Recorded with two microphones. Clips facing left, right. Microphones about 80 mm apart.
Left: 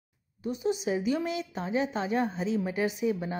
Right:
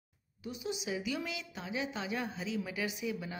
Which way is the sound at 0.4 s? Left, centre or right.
Left.